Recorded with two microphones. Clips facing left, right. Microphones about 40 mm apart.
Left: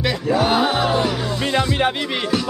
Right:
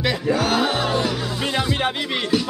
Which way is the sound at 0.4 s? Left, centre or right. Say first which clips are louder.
Left 3 dB; centre.